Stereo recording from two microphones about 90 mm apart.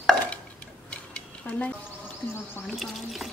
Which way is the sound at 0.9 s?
15° left (ahead or behind).